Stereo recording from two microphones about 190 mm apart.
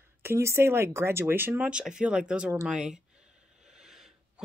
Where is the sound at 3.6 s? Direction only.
5° right (ahead or behind).